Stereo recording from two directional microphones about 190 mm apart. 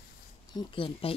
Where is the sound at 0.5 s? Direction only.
25° left (ahead or behind).